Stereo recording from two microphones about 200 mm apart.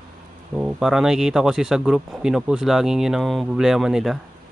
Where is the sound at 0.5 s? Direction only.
5° right (ahead or behind).